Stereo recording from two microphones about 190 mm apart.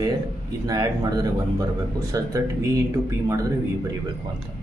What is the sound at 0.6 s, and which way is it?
Speech, 20° right (ahead or behind).